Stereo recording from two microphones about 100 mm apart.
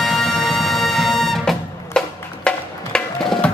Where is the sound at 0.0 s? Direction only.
5° left (ahead or behind).